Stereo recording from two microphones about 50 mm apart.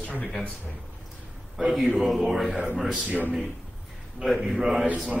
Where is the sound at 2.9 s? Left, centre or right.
Right.